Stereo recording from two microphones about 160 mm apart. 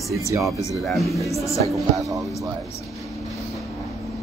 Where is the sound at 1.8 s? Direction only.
20° right (ahead or behind).